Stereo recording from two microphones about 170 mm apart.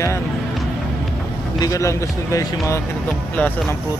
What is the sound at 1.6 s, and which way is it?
Speech, 20° left (ahead or behind).